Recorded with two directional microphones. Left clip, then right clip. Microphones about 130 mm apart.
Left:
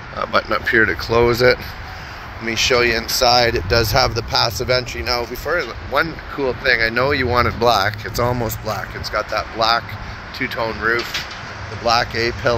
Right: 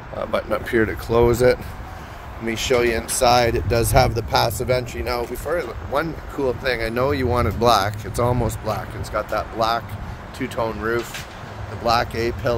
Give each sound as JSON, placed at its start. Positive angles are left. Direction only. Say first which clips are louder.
{"t": 0.2, "sound": "speech", "louder": "left 5 dB", "side_deg": -15}
{"t": 1.0, "sound": "speech", "louder": "left 2 dB", "side_deg": -30}
{"t": 11.8, "sound": "speech", "louder": "left 3 dB", "side_deg": 0}